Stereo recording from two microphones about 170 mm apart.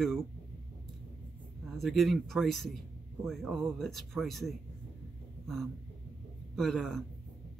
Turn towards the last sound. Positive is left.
turn(degrees=5)  # may be behind; listen again after turning